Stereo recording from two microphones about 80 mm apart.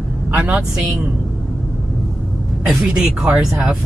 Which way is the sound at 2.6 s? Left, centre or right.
Centre.